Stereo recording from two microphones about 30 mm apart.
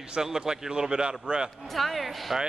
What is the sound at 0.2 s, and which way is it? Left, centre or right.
A man's voice, centre.